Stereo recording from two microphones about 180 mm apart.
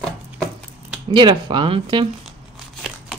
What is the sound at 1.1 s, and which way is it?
Speech, 25° right (ahead or behind).